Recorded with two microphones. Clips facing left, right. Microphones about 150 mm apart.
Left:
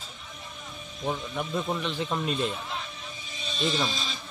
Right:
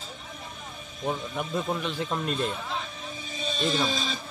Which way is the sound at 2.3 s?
45° right (ahead or behind).